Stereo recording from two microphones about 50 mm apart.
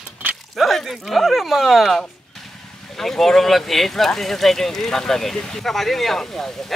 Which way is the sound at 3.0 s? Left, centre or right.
Centre.